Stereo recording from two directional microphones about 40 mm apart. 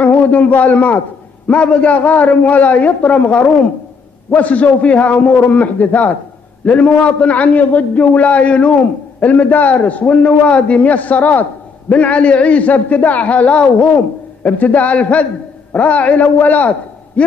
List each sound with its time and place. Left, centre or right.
0.0 s a man's voice: left
9.3 s a man's voice: left
14.6 s a man's voice: left